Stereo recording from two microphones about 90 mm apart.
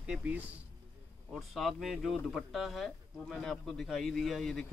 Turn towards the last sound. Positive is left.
turn(degrees=0)  # may be behind; listen again after turning